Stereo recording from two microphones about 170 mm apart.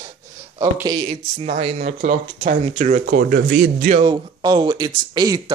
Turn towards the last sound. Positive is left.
turn(degrees=-25)  # may be behind; listen again after turning